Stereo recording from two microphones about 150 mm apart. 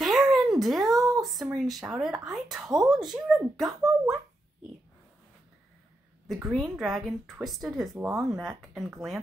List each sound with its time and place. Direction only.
0.0 s a sound: centre (ahead or behind)
1.2 s a woman's voice: centre (ahead or behind)
6.2 s a woman's voice: centre (ahead or behind)
7.9 s speech: 20° right (ahead or behind)
8.3 s a woman's voice: centre (ahead or behind)